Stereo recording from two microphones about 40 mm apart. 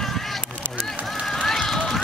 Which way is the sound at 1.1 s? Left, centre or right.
Centre.